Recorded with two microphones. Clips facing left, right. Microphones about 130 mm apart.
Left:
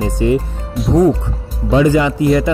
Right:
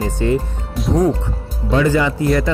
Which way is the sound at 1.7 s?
15° left (ahead or behind).